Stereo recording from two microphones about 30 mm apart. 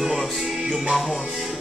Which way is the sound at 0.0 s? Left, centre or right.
Centre.